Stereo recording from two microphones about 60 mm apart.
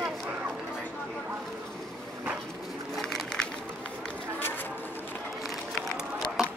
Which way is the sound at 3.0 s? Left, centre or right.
Centre.